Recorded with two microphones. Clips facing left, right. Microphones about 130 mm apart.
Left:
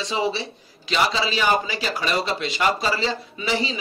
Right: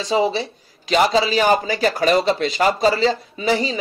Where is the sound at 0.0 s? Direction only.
35° right (ahead or behind).